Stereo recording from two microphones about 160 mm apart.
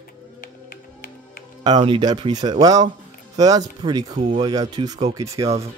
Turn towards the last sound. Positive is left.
turn(degrees=-20)  # may be behind; listen again after turning